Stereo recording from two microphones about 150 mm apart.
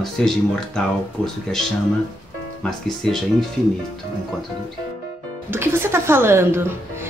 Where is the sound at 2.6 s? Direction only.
Centre (ahead or behind).